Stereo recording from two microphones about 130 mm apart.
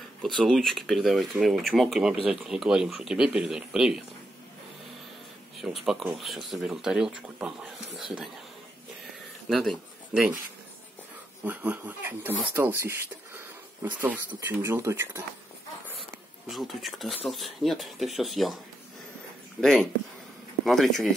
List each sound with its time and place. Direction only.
0.2 s speech: 5° left (ahead or behind)
5.6 s speech: centre (ahead or behind)
9.5 s speech: centre (ahead or behind)
11.4 s speech: 15° right (ahead or behind)
16.4 s speech: centre (ahead or behind)
19.6 s speech: 5° left (ahead or behind)